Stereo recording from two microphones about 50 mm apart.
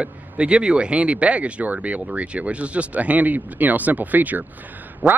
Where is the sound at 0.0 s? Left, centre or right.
Right.